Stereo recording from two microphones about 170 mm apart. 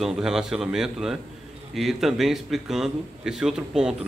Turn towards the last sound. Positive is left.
turn(degrees=-5)  # may be behind; listen again after turning